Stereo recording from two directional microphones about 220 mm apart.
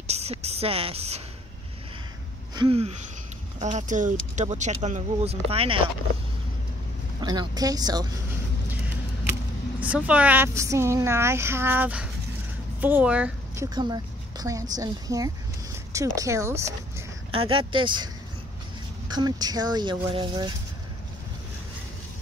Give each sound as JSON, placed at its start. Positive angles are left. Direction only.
{"t": 0.0, "sound": "speech", "side_deg": -30}
{"t": 2.5, "sound": "speech", "side_deg": -25}
{"t": 7.2, "sound": "speech", "side_deg": -20}
{"t": 9.8, "sound": "speech", "side_deg": -5}
{"t": 13.7, "sound": "speech", "side_deg": -20}
{"t": 17.3, "sound": "speech", "side_deg": -25}